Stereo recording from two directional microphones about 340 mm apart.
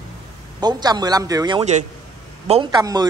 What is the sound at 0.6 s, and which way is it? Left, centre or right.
A man's voice, centre.